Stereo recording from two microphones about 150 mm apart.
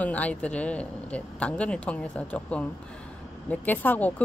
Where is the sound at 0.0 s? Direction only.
10° left (ahead or behind).